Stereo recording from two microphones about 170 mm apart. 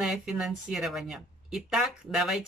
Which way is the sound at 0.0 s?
Centre (ahead or behind).